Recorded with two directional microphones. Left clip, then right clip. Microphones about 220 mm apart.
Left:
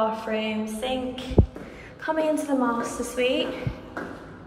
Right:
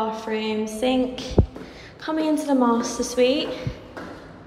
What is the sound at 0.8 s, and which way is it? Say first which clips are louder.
Speech: right 8 dB; 90° right.